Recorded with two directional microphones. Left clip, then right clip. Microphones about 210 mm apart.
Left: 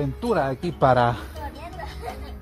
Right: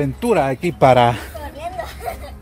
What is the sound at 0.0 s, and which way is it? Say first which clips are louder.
Speech: right 6 dB; 15° right (ahead or behind).